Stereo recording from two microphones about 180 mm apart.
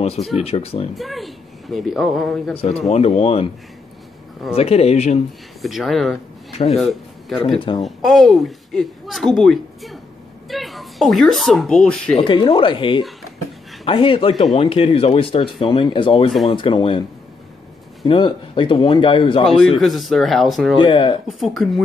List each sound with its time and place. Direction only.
0.4 s speech: 35° left (ahead or behind)
0.9 s a woman's voice: centre (ahead or behind)
2.5 s speech: 35° left (ahead or behind)
4.6 s speech: 35° left (ahead or behind)
5.6 s a woman's voice: centre (ahead or behind)
12.2 s speech: 30° left (ahead or behind)
18.0 s speech: 30° left (ahead or behind)
19.8 s a woman's voice: centre (ahead or behind)
20.7 s speech: 25° left (ahead or behind)
21.4 s a woman's voice: centre (ahead or behind)